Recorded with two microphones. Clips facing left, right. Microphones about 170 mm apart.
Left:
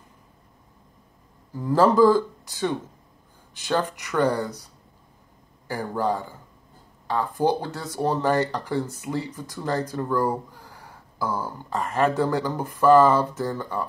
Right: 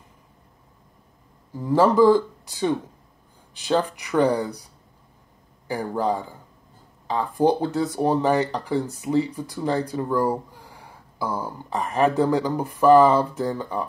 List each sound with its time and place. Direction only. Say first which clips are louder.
1.6 s speech: even; centre (ahead or behind)
4.0 s speech: right 2 dB; 15° right (ahead or behind)
5.7 s speech: right 1 dB; 15° right (ahead or behind)